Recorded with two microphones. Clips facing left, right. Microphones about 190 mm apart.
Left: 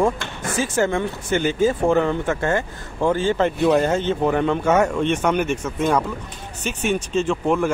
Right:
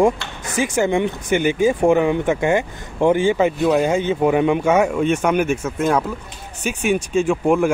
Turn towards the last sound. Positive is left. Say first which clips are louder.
# right 3 dB
turn(degrees=-10)  # may be behind; listen again after turning